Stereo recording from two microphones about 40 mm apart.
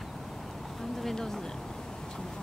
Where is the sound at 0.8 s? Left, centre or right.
Centre.